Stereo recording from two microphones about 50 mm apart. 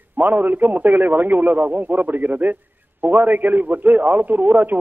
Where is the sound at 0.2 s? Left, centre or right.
Right.